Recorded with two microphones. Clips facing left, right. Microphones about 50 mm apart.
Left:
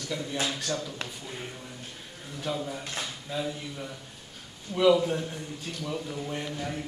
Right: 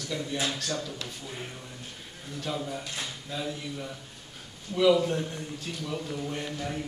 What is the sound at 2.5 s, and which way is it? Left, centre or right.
A man's voice, centre.